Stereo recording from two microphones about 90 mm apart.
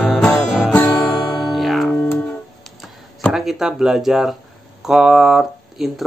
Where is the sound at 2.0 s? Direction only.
20° left (ahead or behind).